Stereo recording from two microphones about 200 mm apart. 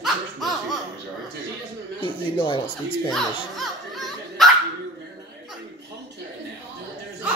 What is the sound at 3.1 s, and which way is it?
Dog, centre (ahead or behind).